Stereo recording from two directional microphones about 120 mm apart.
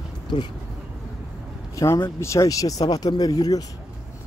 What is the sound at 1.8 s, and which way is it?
Speech, 30° left (ahead or behind).